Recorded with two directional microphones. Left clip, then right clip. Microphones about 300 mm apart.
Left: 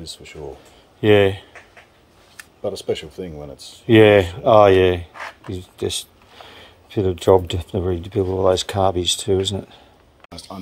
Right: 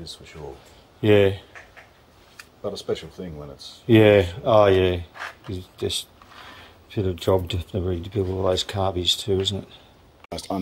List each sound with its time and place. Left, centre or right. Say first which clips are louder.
0.0 s speech: left 3 dB; left
1.0 s speech: left 3 dB; centre
2.6 s speech: left 4 dB; left
3.8 s speech: left 4 dB; centre
10.3 s speech: right 7 dB; right